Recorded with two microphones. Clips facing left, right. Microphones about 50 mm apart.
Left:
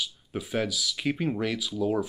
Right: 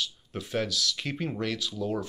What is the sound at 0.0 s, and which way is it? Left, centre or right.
Speech, centre.